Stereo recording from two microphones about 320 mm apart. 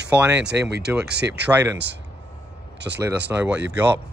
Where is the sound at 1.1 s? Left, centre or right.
Right.